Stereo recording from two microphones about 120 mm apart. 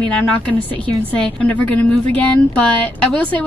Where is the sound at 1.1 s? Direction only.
10° left (ahead or behind).